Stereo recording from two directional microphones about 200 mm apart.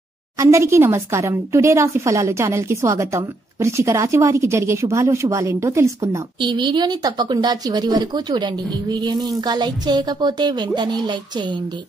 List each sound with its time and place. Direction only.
0.4 s a woman's voice: 15° right (ahead or behind)